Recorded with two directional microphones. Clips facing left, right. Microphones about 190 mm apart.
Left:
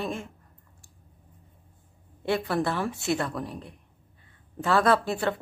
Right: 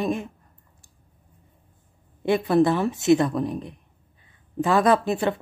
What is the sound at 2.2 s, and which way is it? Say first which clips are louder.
Speech: right 7 dB; 20° right (ahead or behind).